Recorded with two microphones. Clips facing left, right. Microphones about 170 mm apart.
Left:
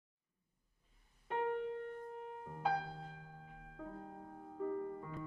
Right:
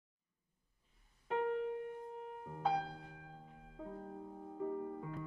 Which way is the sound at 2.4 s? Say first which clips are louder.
Right 1 dB; 5° right (ahead or behind).